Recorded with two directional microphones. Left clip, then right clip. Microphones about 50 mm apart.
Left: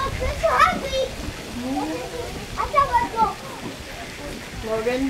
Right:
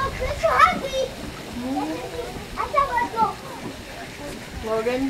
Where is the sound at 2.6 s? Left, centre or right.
Centre.